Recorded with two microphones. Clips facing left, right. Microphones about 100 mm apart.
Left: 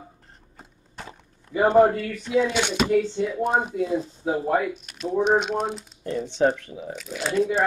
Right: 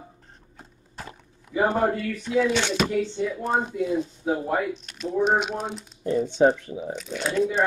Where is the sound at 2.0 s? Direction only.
Centre (ahead or behind).